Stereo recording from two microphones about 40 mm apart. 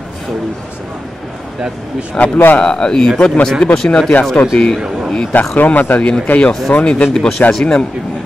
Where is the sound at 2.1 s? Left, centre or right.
Left.